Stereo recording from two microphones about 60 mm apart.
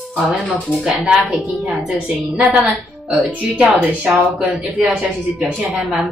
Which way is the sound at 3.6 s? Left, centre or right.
Right.